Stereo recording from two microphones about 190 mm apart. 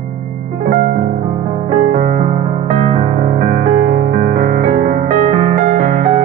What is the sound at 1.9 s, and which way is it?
Music, 45° right (ahead or behind).